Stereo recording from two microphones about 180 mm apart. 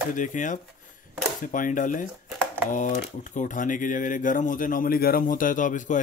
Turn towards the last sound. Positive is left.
turn(degrees=45)  # may be behind; listen again after turning